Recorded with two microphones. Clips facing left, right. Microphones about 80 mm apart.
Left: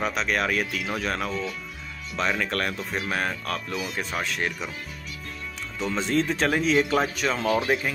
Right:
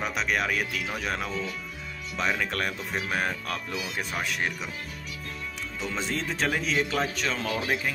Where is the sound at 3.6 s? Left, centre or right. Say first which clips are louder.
Left 3 dB; centre.